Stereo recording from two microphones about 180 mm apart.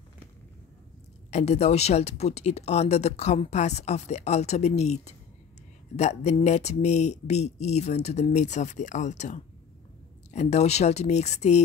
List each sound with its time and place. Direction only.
1.3 s speech: 40° left (ahead or behind)